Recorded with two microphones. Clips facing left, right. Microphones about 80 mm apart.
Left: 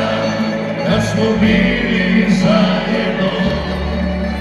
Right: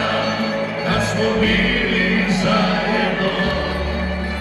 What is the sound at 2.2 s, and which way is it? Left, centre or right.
Music, right.